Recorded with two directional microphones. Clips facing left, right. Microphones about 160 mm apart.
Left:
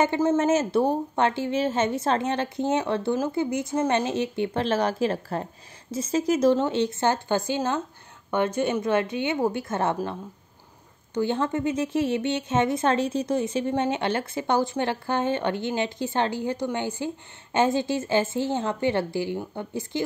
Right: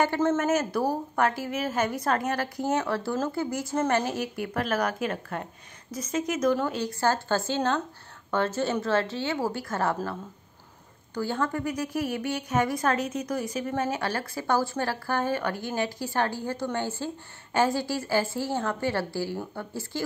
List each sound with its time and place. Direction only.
0.0 s a woman's voice: 15° left (ahead or behind)
11.1 s a woman's voice: 20° left (ahead or behind)